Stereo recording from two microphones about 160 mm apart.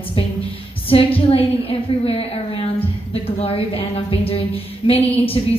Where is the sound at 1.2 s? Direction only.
35° left (ahead or behind).